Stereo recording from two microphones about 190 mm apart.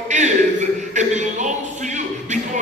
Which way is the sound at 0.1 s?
40° right (ahead or behind).